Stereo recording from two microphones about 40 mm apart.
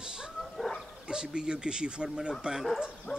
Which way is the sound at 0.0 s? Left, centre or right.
Right.